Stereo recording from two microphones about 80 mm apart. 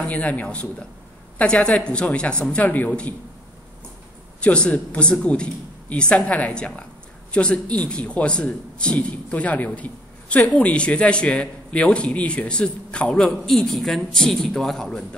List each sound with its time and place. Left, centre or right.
0.0 s a man's voice: centre
4.4 s a man's voice: centre